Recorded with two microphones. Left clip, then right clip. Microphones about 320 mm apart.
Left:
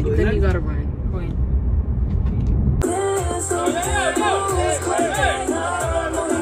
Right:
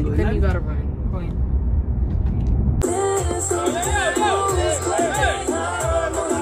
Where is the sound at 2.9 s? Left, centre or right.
Centre.